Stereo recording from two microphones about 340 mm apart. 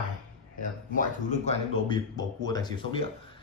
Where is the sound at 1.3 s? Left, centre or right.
Centre.